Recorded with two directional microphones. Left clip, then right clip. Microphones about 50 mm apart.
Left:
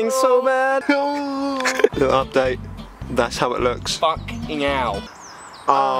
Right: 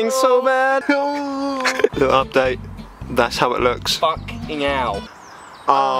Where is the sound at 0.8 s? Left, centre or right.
Centre.